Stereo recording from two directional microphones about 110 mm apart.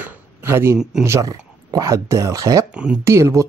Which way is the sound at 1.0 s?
30° right (ahead or behind).